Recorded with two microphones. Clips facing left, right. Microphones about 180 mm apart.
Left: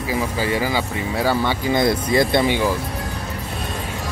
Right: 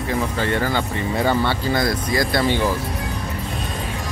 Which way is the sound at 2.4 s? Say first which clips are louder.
Even; 10° left (ahead or behind).